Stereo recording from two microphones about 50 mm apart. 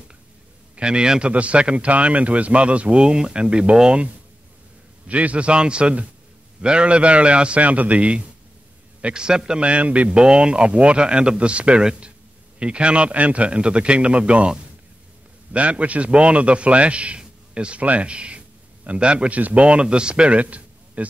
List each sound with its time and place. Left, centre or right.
0.7 s a man's voice: centre
5.0 s a man's voice: right
15.5 s a man's voice: right